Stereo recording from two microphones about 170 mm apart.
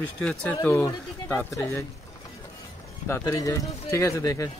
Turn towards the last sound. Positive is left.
turn(degrees=20)  # may be behind; listen again after turning